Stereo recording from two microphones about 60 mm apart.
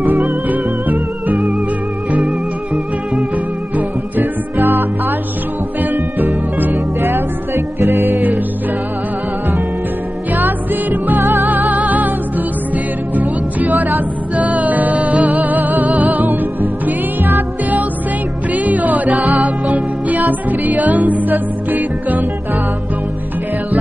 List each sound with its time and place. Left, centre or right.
0.5 s music: right
2.2 s music: centre
4.2 s music: right
6.7 s music: right
10.3 s music: right
11.1 s music: right
11.4 s music: right
18.5 s music: right